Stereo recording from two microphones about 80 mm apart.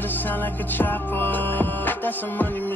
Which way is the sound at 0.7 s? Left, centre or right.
Left.